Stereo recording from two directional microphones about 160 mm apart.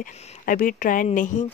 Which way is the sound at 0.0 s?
60° left (ahead or behind).